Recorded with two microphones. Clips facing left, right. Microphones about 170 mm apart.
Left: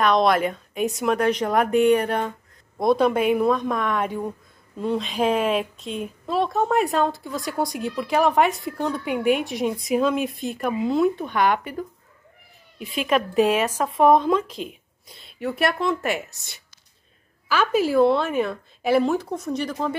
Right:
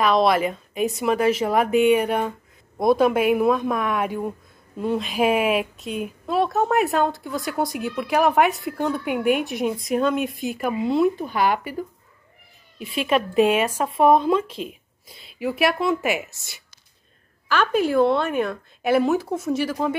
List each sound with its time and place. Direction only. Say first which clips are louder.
0.0 s a woman's voice: even; centre (ahead or behind)
12.7 s a woman's voice: right 1 dB; centre (ahead or behind)
17.5 s a woman's voice: even; 5° left (ahead or behind)